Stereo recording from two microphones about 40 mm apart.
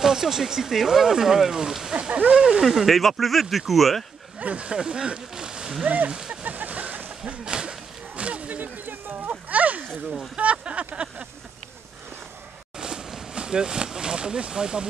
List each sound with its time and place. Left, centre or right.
0.0 s speech: centre
2.0 s speech: right
2.3 s speech: centre
2.6 s speech: centre
4.4 s speech: right
4.7 s speech: centre
5.9 s speech: right
6.1 s speech: centre
6.4 s a sound: right
7.2 s a sound: right
10.3 s a sound: right
12.7 s a sound: centre